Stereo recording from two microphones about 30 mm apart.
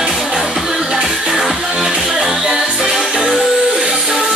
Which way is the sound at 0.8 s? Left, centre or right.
Right.